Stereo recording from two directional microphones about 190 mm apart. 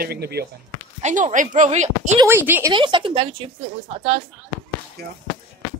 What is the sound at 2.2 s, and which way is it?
Speech, 10° right (ahead or behind).